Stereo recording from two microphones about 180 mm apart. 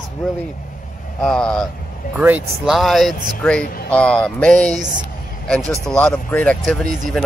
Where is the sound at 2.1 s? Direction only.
10° right (ahead or behind).